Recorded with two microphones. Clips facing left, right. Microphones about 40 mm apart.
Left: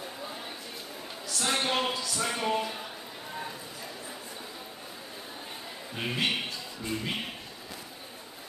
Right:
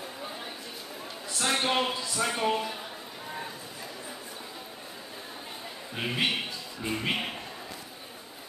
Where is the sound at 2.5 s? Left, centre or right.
Centre.